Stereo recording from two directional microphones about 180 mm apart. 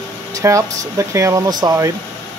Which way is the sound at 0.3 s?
15° right (ahead or behind).